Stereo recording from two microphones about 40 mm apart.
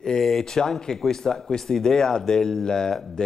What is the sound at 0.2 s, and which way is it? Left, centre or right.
Speech, centre.